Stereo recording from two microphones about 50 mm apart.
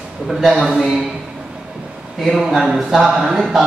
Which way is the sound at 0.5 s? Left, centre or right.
Centre.